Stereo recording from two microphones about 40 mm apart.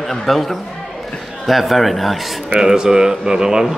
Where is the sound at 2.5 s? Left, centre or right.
Centre.